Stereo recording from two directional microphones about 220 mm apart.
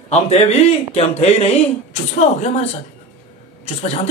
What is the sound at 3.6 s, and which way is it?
Speech, 30° left (ahead or behind).